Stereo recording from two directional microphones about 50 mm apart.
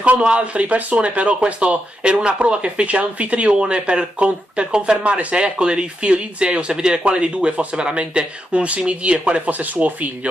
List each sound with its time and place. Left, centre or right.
0.2 s speech: right